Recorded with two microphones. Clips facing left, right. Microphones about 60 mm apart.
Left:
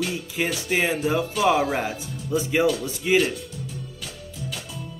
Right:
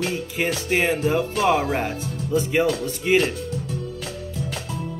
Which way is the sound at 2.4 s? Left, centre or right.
Centre.